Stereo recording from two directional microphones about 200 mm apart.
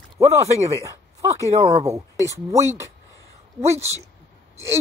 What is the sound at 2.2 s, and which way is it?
Speech, 15° right (ahead or behind).